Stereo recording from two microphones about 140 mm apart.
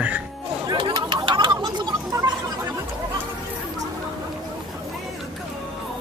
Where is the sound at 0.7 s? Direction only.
35° right (ahead or behind).